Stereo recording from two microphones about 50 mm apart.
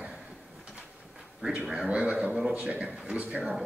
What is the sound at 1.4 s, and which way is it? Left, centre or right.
A man's voice, centre.